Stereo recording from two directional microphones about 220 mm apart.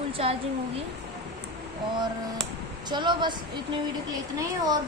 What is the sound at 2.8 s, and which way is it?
A woman's voice, 20° right (ahead or behind).